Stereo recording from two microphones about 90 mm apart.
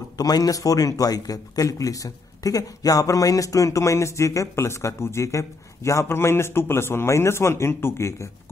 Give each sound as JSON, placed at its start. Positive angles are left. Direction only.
{"t": 0.2, "sound": "a man's voice", "side_deg": 45}